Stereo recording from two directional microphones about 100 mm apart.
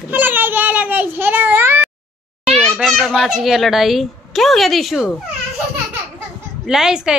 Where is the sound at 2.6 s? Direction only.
5° left (ahead or behind).